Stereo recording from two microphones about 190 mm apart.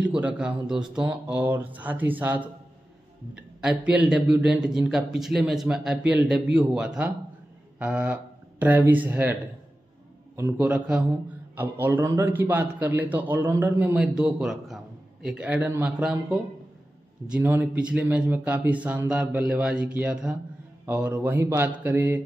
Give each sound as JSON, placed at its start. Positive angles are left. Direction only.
{"t": 0.0, "sound": "a man's voice", "side_deg": -5}